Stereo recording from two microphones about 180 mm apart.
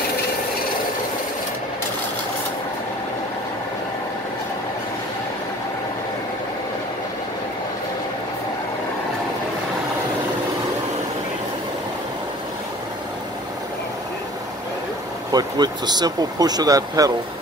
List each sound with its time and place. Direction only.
15.3 s speech: 25° right (ahead or behind)